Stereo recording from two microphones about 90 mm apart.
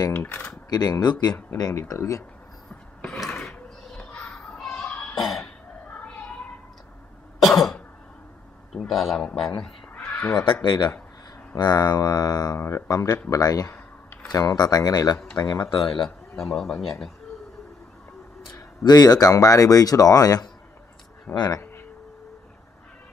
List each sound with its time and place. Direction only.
0.1 s speech: 20° left (ahead or behind)
0.7 s speech: 45° left (ahead or behind)
4.3 s children playing: 5° left (ahead or behind)
4.7 s cough: 15° left (ahead or behind)
5.4 s a sound: 15° left (ahead or behind)
7.4 s cough: centre (ahead or behind)
8.7 s a man's voice: centre (ahead or behind)
9.6 s cat: 15° left (ahead or behind)
10.4 s speech: 55° left (ahead or behind)
12.5 s speech: 30° left (ahead or behind)
16.3 s a man's voice: 5° left (ahead or behind)
18.9 s speech: 50° left (ahead or behind)